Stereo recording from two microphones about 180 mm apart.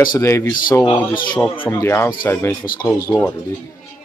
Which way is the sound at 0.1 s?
15° left (ahead or behind).